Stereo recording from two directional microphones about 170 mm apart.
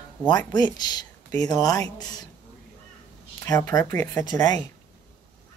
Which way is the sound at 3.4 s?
20° left (ahead or behind).